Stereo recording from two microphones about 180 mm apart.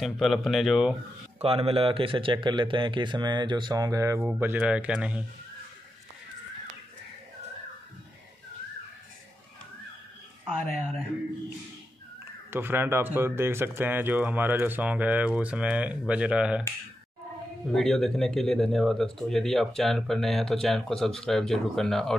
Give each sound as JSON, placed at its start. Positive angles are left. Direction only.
{"t": 0.0, "sound": "speech", "side_deg": 0}
{"t": 1.4, "sound": "speech", "side_deg": -30}
{"t": 12.4, "sound": "speech", "side_deg": -10}
{"t": 17.7, "sound": "speech", "side_deg": 0}